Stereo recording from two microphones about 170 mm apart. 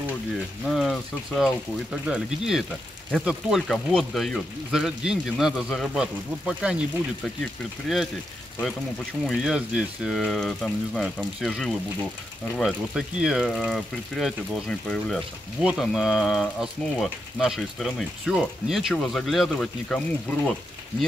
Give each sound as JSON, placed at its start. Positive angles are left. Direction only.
{"t": 0.7, "sound": "speech", "side_deg": 0}
{"t": 9.2, "sound": "speech", "side_deg": 0}